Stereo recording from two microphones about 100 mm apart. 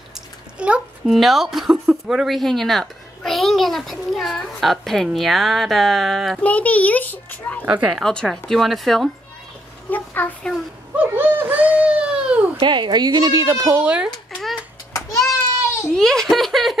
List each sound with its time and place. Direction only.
0.6 s a child's voice: 10° right (ahead or behind)
6.4 s a child's voice: 15° left (ahead or behind)
7.6 s speech: 15° right (ahead or behind)
7.9 s speech: 5° left (ahead or behind)
9.8 s a child's voice: 20° left (ahead or behind)
11.0 s a sound: 20° right (ahead or behind)
12.5 s a woman's voice: 50° right (ahead or behind)
13.4 s a child's voice: 30° right (ahead or behind)
13.7 s speech: 15° right (ahead or behind)
14.9 s a sound: 35° left (ahead or behind)
15.9 s speech: 5° left (ahead or behind)